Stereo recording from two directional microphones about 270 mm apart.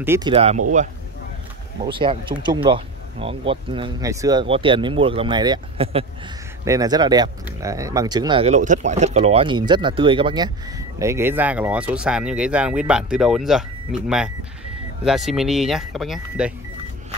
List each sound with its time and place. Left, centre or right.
0.0 s speech: centre
0.3 s speech: right
1.9 s speech: centre